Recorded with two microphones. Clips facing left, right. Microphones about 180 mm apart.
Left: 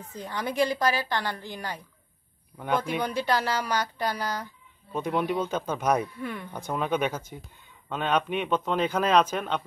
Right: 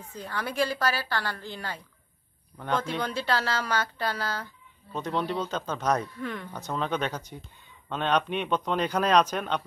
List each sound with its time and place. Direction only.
0.1 s speech: 10° left (ahead or behind)